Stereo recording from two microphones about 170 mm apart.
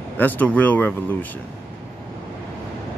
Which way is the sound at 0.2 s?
10° left (ahead or behind).